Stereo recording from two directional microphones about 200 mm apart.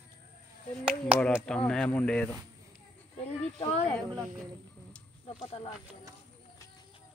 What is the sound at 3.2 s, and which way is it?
Speech, 30° left (ahead or behind).